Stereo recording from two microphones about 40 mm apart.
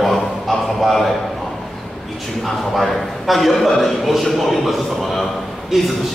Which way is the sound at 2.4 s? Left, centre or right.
Centre.